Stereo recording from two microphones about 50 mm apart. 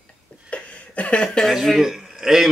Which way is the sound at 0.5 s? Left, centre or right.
Left.